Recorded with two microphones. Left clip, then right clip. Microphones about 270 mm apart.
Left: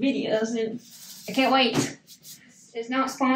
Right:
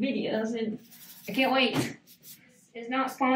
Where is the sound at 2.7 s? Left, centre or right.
Centre.